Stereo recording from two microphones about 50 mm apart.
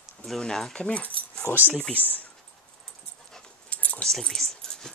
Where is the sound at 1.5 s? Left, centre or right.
Left.